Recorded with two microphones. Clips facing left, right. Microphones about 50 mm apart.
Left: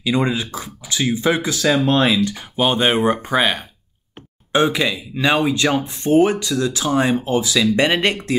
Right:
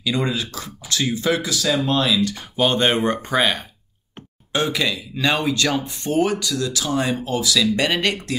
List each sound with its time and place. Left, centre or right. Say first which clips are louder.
0.0 s speech: left 3 dB; left
2.2 s speech: left 1 dB; centre
4.5 s speech: left 4 dB; left